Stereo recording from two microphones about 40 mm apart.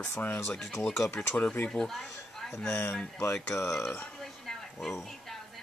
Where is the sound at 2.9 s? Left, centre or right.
Left.